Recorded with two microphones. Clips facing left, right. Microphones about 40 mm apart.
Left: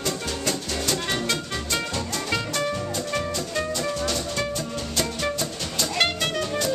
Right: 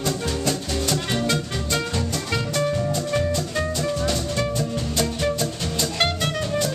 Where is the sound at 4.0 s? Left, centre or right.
Centre.